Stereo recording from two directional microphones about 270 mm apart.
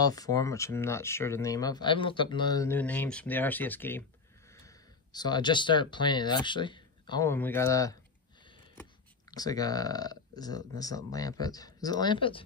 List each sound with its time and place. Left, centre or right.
0.0 s speech: centre
9.3 s speech: centre